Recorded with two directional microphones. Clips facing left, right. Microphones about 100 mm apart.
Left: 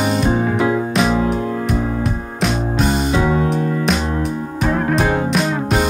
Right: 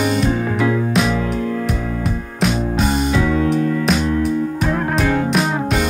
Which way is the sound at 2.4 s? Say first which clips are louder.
Even; centre (ahead or behind).